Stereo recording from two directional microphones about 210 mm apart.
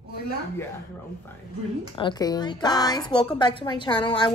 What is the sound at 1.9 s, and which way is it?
A woman's voice, 20° left (ahead or behind).